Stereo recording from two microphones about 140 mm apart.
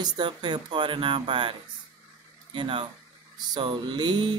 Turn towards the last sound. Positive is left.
turn(degrees=-35)  # may be behind; listen again after turning